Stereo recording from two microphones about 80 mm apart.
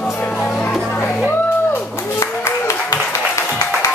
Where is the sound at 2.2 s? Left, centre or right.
Left.